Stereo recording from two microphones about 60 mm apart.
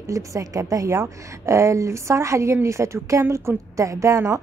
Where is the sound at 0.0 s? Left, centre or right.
Right.